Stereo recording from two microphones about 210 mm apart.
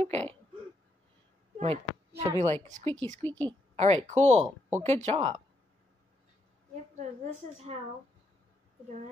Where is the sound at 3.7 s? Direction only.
30° right (ahead or behind).